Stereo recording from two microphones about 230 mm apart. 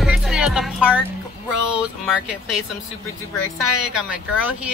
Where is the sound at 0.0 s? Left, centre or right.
Centre.